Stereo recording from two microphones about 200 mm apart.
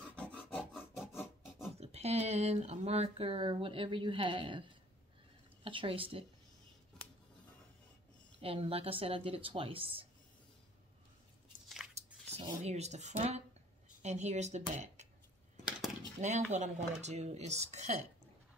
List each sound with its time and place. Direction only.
0.1 s filing: 5° left (ahead or behind)
1.8 s speech: 30° right (ahead or behind)
8.4 s speech: 30° right (ahead or behind)
11.9 s chewing: 30° right (ahead or behind)
12.6 s speech: 35° right (ahead or behind)
16.2 s speech: 35° right (ahead or behind)